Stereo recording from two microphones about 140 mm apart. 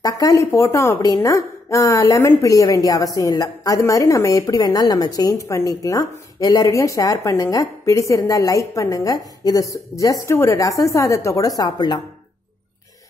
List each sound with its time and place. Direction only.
0.0 s speech: 25° left (ahead or behind)